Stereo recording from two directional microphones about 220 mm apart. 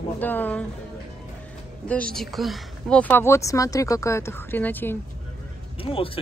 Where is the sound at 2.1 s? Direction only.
Centre (ahead or behind).